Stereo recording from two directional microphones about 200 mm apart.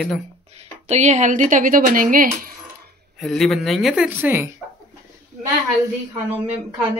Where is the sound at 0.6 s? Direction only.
35° right (ahead or behind).